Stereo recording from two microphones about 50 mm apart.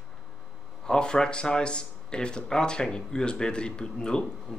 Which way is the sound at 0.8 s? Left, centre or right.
Centre.